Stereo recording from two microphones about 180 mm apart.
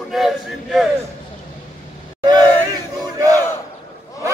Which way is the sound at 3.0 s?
20° right (ahead or behind).